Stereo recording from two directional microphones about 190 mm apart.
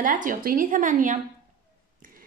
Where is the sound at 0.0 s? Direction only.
45° right (ahead or behind).